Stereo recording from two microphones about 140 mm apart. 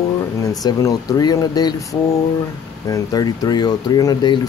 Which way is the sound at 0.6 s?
30° left (ahead or behind).